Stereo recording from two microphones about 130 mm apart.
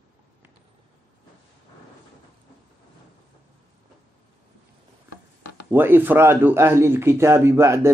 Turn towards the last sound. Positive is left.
turn(degrees=-20)  # may be behind; listen again after turning